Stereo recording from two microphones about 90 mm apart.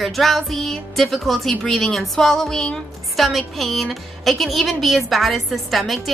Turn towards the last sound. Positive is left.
turn(degrees=0)  # may be behind; listen again after turning